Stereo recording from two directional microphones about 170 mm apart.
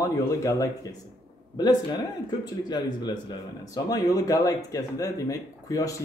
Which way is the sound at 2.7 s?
25° left (ahead or behind).